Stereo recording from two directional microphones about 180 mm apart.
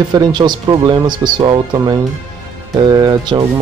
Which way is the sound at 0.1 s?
25° right (ahead or behind).